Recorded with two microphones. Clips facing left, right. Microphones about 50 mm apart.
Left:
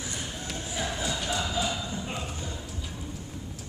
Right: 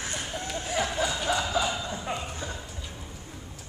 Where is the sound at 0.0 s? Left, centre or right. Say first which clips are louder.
Right 3 dB; right.